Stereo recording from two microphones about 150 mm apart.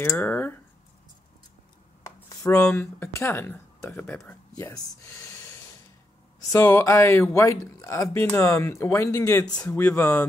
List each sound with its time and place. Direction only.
0.0 s speech: 10° left (ahead or behind)
2.4 s speech: 10° left (ahead or behind)
9.6 s speech: 10° left (ahead or behind)